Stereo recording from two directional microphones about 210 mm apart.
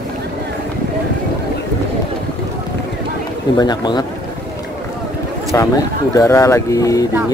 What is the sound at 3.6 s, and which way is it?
Speech, 20° left (ahead or behind).